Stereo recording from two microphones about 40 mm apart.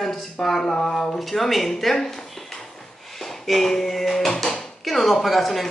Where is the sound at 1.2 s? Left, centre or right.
Centre.